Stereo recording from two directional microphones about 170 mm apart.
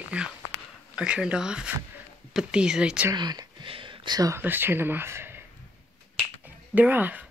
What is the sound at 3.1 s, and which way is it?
Speech, 25° right (ahead or behind).